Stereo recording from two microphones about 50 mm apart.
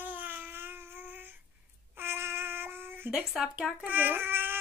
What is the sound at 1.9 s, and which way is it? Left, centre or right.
Child singing, right.